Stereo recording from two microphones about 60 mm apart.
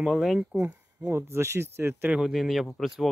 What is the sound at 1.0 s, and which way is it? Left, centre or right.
Speech, right.